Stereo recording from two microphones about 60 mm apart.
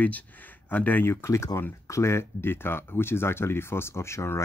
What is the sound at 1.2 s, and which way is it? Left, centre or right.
Speech, left.